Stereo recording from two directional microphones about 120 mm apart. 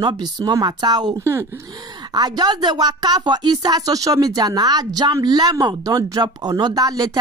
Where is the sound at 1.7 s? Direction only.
35° right (ahead or behind).